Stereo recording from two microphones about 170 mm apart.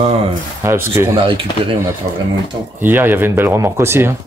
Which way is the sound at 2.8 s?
10° right (ahead or behind).